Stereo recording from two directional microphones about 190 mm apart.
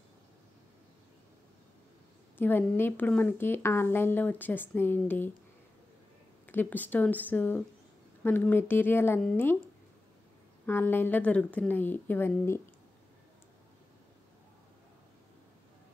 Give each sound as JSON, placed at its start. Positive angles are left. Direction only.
{"t": 2.3, "sound": "a woman's voice", "side_deg": 10}
{"t": 6.4, "sound": "a woman's voice", "side_deg": 10}
{"t": 10.7, "sound": "a woman's voice", "side_deg": 10}